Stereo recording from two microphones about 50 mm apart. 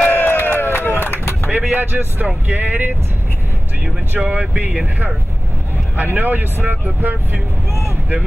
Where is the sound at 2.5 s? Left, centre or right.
Right.